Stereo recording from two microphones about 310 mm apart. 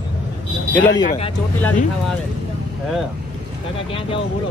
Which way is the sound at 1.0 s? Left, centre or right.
Centre.